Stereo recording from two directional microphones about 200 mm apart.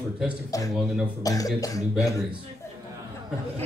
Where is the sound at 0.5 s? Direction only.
15° left (ahead or behind).